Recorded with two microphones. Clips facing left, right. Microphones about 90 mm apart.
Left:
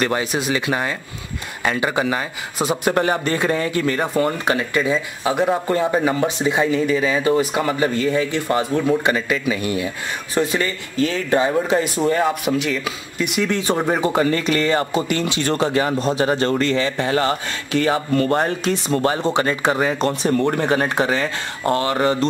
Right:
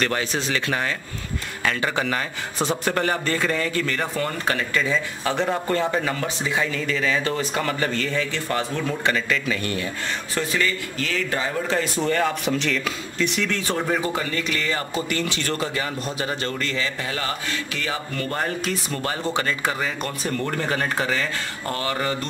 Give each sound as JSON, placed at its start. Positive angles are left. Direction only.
{"t": 0.0, "sound": "speech", "side_deg": 15}
{"t": 10.3, "sound": "speech", "side_deg": 25}
{"t": 13.9, "sound": "speech", "side_deg": 35}
{"t": 15.0, "sound": "speech", "side_deg": 20}